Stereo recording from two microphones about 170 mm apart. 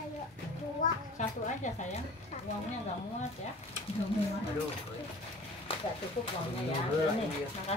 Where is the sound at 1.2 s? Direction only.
45° left (ahead or behind).